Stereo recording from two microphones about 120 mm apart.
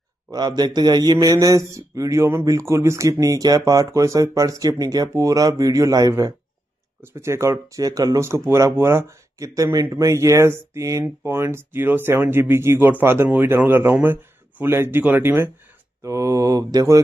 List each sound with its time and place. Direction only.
0.3 s a man's voice: 35° right (ahead or behind)